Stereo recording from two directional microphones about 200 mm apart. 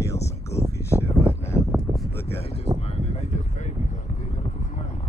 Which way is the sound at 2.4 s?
30° left (ahead or behind).